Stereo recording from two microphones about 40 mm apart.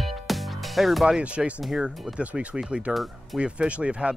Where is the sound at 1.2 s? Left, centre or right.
Right.